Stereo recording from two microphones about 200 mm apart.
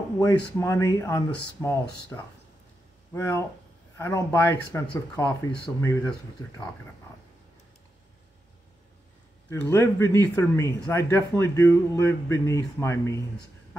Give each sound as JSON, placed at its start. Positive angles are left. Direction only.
{"t": 0.2, "sound": "speech", "side_deg": 15}
{"t": 9.5, "sound": "speech", "side_deg": 15}